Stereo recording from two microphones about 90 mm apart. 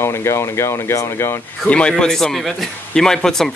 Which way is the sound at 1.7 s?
10° left (ahead or behind).